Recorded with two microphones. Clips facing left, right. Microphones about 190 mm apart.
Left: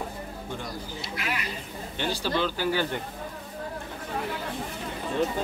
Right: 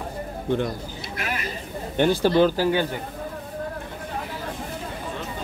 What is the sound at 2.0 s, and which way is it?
Speech, 55° right (ahead or behind).